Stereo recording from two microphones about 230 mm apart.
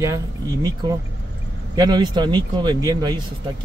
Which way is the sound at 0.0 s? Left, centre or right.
Centre.